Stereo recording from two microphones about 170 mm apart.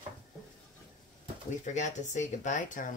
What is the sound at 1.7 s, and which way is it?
Speech, 45° left (ahead or behind).